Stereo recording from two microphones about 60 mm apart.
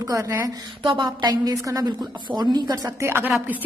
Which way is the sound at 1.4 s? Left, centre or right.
Right.